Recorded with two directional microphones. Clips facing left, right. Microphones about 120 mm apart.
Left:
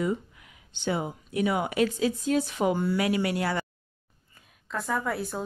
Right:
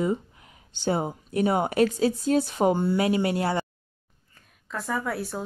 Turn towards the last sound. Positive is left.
turn(degrees=0)  # may be behind; listen again after turning